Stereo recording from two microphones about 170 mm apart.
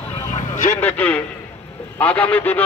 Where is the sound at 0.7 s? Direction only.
10° left (ahead or behind).